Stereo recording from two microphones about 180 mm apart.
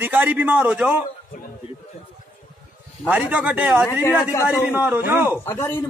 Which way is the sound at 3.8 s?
15° left (ahead or behind).